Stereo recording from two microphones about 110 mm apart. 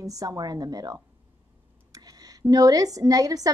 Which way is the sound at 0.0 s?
30° right (ahead or behind).